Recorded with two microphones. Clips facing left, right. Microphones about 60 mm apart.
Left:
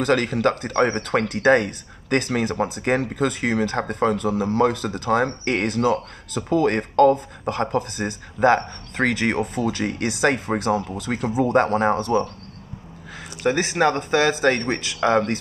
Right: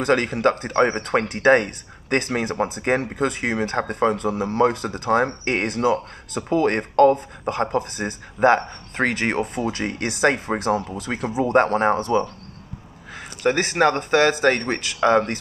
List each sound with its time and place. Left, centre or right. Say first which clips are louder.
0.0 s speech: right 1 dB; right
13.4 s speech: right 1 dB; right